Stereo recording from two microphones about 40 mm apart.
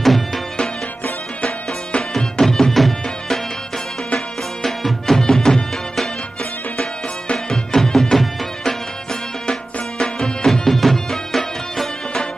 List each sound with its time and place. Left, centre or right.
0.0 s music: centre
2.1 s music: centre
4.6 s music: centre
7.3 s music: centre